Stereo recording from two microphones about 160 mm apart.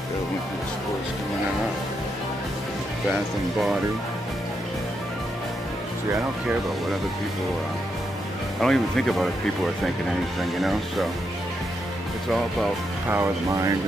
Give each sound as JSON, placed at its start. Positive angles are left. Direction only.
{"t": 8.5, "sound": "speech", "side_deg": 5}
{"t": 10.6, "sound": "speech", "side_deg": 0}
{"t": 13.1, "sound": "speech", "side_deg": -15}